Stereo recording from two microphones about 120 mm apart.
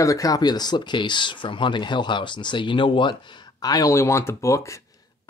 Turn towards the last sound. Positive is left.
turn(degrees=25)  # may be behind; listen again after turning